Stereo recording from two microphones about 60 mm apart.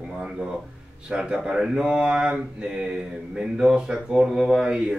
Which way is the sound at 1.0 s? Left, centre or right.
Centre.